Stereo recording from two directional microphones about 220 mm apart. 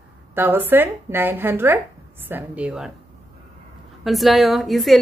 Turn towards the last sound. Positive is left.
turn(degrees=0)  # may be behind; listen again after turning